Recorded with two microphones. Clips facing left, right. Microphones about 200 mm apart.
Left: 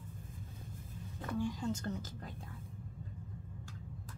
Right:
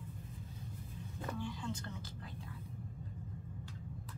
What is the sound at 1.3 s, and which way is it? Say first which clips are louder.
Speech: left 8 dB; 45° left (ahead or behind).